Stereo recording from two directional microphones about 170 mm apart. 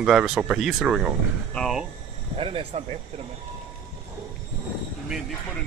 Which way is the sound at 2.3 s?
35° right (ahead or behind).